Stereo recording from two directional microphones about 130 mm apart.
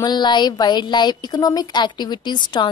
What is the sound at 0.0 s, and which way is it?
A woman's voice, 35° left (ahead or behind).